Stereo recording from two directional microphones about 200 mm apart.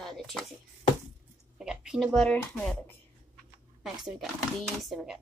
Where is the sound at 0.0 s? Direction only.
Centre (ahead or behind).